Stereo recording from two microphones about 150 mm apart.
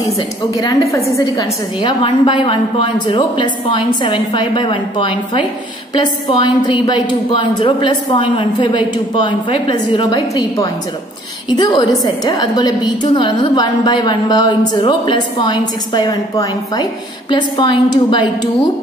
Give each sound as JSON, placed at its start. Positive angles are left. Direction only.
{"t": 0.6, "sound": "a woman's voice", "side_deg": 20}